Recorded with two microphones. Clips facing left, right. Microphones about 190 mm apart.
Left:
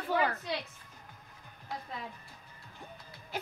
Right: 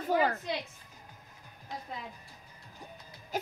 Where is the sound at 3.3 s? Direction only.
40° right (ahead or behind).